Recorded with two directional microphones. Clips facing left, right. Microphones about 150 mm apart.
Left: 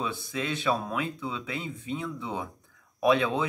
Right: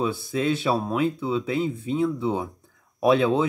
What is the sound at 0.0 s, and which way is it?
Speech, 35° right (ahead or behind).